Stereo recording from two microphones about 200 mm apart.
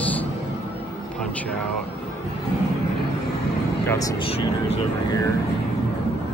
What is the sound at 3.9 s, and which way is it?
Speech, 15° left (ahead or behind).